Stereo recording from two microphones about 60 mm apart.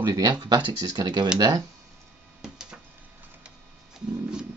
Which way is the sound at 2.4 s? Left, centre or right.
Centre.